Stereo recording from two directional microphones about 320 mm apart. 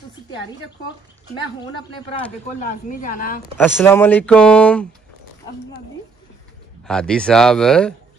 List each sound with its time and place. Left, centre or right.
1.6 s speech: centre
2.6 s speech: left
3.5 s speech: centre
6.9 s speech: centre